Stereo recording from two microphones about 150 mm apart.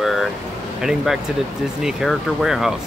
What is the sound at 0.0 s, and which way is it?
Vehicle, centre (ahead or behind).